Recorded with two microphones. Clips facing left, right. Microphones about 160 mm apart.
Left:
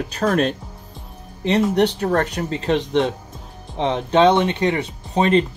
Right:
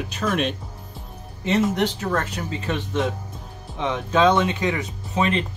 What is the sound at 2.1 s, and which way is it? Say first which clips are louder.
Speech: left 5 dB; 70° left (ahead or behind).